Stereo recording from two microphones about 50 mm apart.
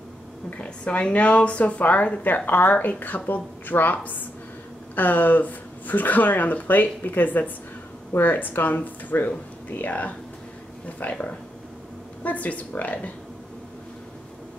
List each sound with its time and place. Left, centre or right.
0.6 s a woman's voice: left